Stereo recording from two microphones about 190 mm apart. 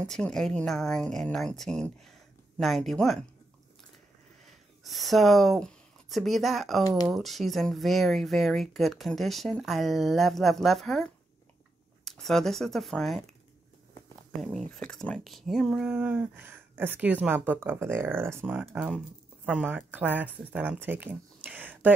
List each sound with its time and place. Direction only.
0.0 s speech: 5° left (ahead or behind)
4.8 s speech: centre (ahead or behind)
14.7 s speech: 5° left (ahead or behind)